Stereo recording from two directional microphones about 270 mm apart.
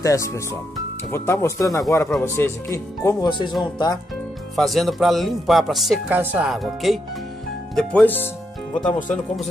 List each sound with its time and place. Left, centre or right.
0.0 s speech: centre
4.6 s speech: centre